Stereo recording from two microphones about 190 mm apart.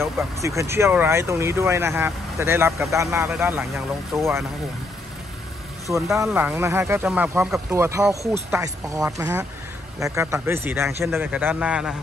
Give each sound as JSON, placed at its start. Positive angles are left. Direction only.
{"t": 0.0, "sound": "speech", "side_deg": -15}
{"t": 6.1, "sound": "speech", "side_deg": -10}
{"t": 8.5, "sound": "speech", "side_deg": -15}